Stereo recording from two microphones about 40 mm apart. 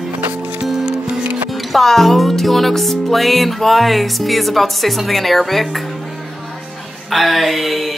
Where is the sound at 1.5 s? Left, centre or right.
Centre.